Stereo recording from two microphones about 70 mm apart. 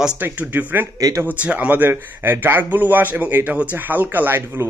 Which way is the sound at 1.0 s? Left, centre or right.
Right.